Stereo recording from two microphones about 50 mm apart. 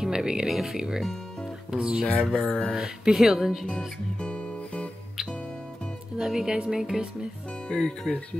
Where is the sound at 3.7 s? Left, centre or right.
Centre.